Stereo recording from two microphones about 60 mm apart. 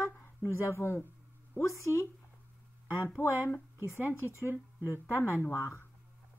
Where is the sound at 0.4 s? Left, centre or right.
Left.